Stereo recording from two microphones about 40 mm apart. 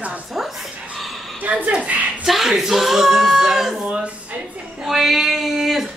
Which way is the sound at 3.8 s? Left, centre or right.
Right.